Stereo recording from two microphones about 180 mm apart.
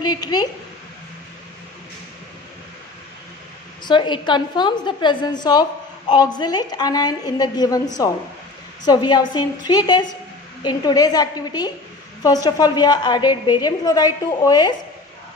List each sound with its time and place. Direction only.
0.0 s a woman's voice: 25° left (ahead or behind)
3.8 s a woman's voice: 25° left (ahead or behind)